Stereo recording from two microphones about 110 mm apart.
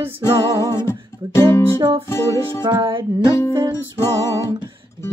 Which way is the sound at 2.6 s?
40° right (ahead or behind).